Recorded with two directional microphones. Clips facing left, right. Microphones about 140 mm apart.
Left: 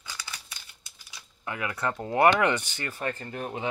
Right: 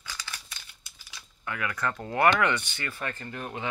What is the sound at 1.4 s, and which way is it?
Speech, 25° left (ahead or behind).